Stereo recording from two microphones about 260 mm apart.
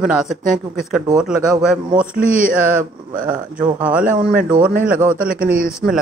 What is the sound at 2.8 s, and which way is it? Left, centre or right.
Speech, right.